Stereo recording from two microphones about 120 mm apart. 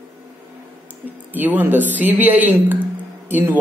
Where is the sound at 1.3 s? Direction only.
15° right (ahead or behind).